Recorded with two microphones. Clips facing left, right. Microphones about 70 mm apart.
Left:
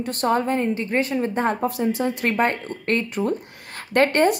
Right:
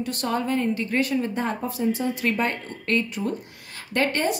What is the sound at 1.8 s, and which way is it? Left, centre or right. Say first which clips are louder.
Speech: left 2 dB; left.